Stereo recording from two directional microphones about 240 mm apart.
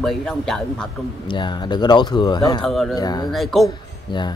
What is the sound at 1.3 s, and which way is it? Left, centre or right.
Speech, centre.